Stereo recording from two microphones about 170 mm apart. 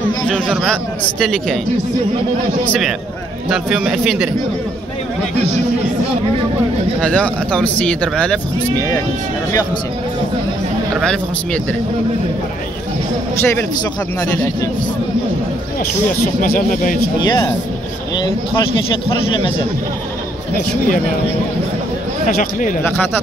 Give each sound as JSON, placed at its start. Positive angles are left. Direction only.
{"t": 0.5, "sound": "speech", "side_deg": -5}
{"t": 3.4, "sound": "speech", "side_deg": -5}
{"t": 7.0, "sound": "speech", "side_deg": 5}
{"t": 11.0, "sound": "speech", "side_deg": 5}
{"t": 13.4, "sound": "speech", "side_deg": 15}
{"t": 16.3, "sound": "speech", "side_deg": 50}
{"t": 17.3, "sound": "speech", "side_deg": 20}
{"t": 19.0, "sound": "a man's voice", "side_deg": 30}
{"t": 22.4, "sound": "speech", "side_deg": 50}